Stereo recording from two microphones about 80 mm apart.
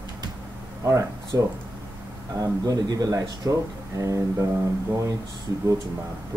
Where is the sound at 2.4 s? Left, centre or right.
Right.